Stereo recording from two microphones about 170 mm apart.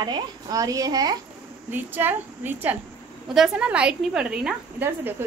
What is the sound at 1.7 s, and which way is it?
A woman's voice, 10° right (ahead or behind).